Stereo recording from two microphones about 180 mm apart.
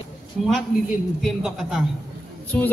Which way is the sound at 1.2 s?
Centre (ahead or behind).